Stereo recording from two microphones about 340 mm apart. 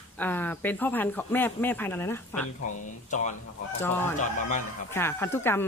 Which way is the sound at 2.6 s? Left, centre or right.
Left.